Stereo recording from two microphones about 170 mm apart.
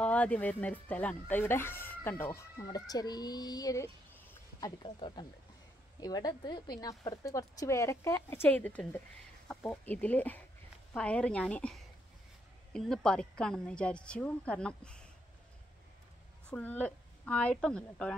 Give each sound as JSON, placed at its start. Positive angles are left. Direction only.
{"t": 0.0, "sound": "a woman's voice", "side_deg": 5}
{"t": 2.6, "sound": "a woman's voice", "side_deg": 25}
{"t": 16.4, "sound": "speech", "side_deg": 10}